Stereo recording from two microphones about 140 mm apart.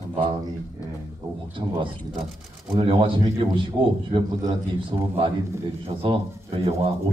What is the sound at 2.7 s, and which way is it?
A man's voice, 40° right (ahead or behind).